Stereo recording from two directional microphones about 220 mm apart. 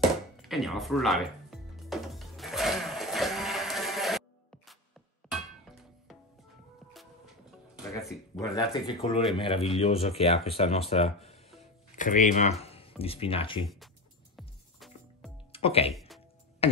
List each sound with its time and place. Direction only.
0.4 s music: centre (ahead or behind)
5.3 s clang: centre (ahead or behind)
8.5 s speech: 20° left (ahead or behind)
15.5 s speech: 25° left (ahead or behind)
15.9 s music: centre (ahead or behind)